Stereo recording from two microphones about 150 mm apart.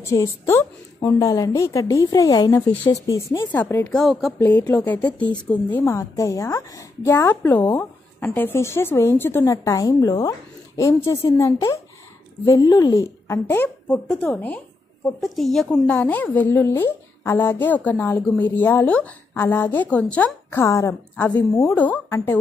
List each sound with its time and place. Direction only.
0.0 s a woman's voice: 20° left (ahead or behind)
3.9 s speech: centre (ahead or behind)
4.4 s a child's voice: 15° left (ahead or behind)